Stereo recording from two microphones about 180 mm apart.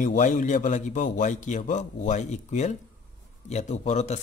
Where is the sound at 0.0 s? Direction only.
45° left (ahead or behind).